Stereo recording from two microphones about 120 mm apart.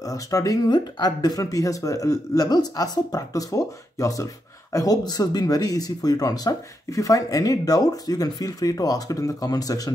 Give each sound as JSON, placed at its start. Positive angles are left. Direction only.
{"t": 0.0, "sound": "speech", "side_deg": 30}